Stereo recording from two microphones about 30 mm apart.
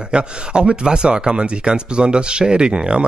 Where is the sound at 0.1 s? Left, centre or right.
Right.